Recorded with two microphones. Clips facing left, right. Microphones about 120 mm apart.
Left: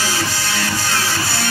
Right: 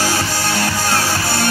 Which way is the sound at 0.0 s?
45° right (ahead or behind).